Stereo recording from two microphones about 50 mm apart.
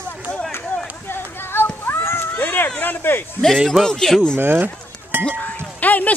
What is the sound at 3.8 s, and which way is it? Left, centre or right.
Speech, centre.